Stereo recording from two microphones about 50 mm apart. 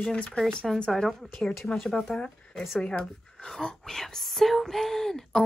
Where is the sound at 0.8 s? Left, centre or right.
Centre.